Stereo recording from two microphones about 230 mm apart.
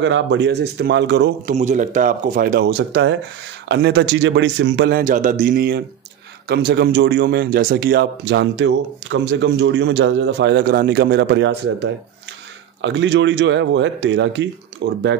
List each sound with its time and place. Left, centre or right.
0.0 s speech: right
1.5 s speech: right